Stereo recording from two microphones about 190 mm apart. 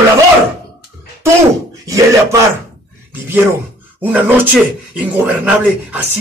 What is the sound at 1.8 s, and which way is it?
Speech, 15° right (ahead or behind).